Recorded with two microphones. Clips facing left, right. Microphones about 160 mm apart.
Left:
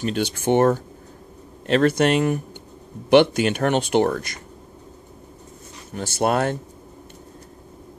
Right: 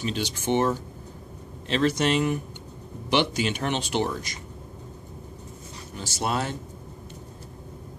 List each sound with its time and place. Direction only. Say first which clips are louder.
0.0 s speech: left 6 dB; 55° left (ahead or behind)
5.9 s speech: left 7 dB; 55° left (ahead or behind)